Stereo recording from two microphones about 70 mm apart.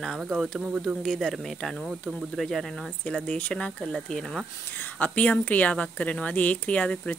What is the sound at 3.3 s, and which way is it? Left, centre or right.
A woman's voice, centre.